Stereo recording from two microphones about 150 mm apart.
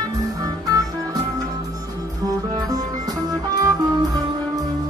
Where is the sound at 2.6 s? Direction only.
25° right (ahead or behind).